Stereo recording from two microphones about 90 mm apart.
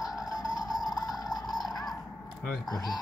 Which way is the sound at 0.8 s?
45° left (ahead or behind).